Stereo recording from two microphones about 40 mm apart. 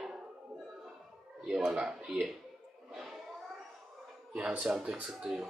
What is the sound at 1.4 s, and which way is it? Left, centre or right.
Speech, centre.